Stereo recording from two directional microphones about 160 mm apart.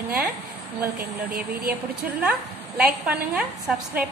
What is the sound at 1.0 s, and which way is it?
Speech, 65° right (ahead or behind).